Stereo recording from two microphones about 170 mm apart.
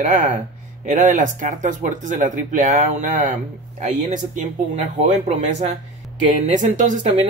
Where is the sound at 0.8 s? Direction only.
50° right (ahead or behind).